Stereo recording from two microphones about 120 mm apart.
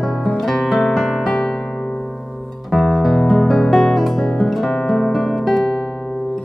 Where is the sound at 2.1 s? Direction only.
5° right (ahead or behind).